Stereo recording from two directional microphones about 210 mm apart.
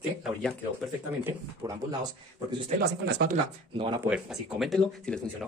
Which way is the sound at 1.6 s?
15° right (ahead or behind).